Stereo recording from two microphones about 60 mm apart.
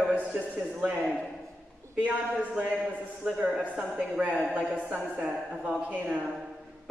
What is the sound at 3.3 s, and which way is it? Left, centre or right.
A man's voice, centre.